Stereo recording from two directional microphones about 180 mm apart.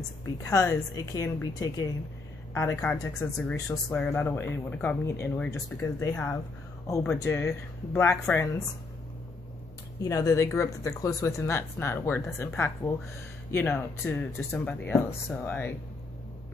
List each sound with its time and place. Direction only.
0.4 s a woman's voice: 20° left (ahead or behind)
10.0 s speech: 20° left (ahead or behind)